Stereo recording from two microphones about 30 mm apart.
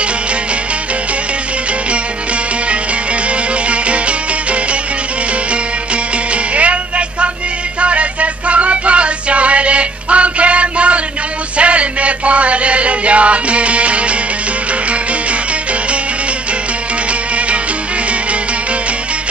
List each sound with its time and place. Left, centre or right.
3.7 s music: right
6.5 s music: right